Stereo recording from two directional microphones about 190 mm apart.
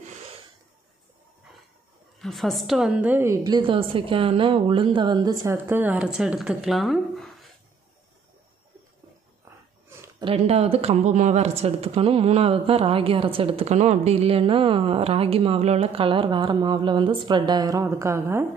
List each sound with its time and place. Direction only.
2.1 s a woman's voice: centre (ahead or behind)
9.4 s a sound: 15° right (ahead or behind)
10.2 s speech: 30° right (ahead or behind); by 18.5 s 15° right (ahead or behind)